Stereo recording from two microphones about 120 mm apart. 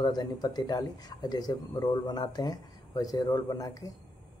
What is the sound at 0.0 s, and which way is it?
Speech, 35° left (ahead or behind).